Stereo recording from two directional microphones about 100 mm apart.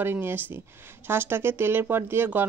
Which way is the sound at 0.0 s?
20° right (ahead or behind).